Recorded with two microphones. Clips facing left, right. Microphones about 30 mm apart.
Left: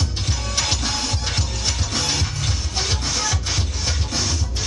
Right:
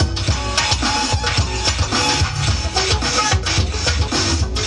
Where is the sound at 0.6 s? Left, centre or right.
Right.